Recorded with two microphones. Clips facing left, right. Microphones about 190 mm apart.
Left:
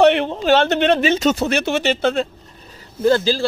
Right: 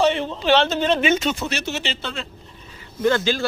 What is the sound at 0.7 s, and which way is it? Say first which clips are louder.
Speech: left 5 dB; 70° left (ahead or behind).